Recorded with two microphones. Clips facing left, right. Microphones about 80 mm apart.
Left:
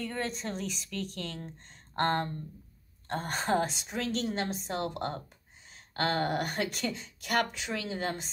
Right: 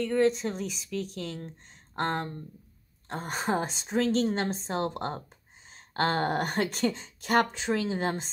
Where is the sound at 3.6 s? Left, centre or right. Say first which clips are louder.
Right 3 dB; right.